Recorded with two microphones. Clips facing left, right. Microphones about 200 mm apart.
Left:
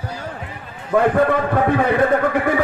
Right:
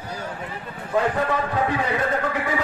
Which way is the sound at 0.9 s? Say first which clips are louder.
Left 7 dB; 55° left (ahead or behind).